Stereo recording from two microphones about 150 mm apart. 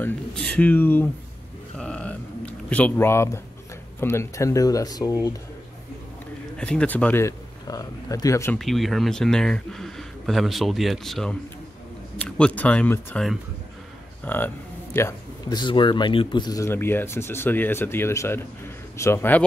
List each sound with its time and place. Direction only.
0.0 s speech: 5° left (ahead or behind)
1.8 s a sound: 5° left (ahead or behind)
4.0 s speech: 15° left (ahead or behind)
6.6 s speech: 5° left (ahead or behind)
8.5 s speech: centre (ahead or behind)
14.2 s a man's voice: 15° left (ahead or behind)
15.6 s speech: 30° left (ahead or behind); by 19.4 s 15° left (ahead or behind)